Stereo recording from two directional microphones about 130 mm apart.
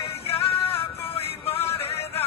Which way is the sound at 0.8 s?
50° left (ahead or behind).